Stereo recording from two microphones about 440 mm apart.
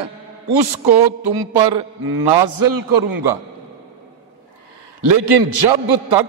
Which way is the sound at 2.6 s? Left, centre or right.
Right.